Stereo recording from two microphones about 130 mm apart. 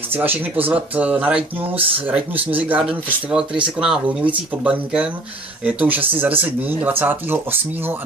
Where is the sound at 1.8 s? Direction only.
45° right (ahead or behind).